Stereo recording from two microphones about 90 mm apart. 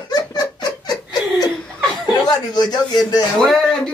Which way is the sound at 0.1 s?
45° left (ahead or behind).